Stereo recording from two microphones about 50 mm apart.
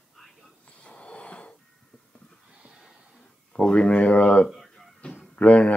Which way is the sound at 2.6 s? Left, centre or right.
Centre.